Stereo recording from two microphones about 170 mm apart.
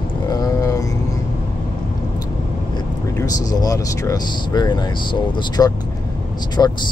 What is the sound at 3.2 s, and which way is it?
Speech, 20° left (ahead or behind).